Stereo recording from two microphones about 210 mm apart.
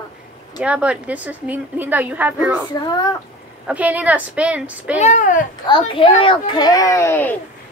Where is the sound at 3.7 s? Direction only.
5° right (ahead or behind).